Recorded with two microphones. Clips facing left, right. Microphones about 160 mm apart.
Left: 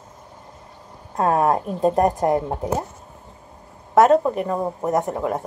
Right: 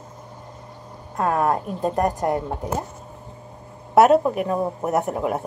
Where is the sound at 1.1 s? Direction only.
25° left (ahead or behind).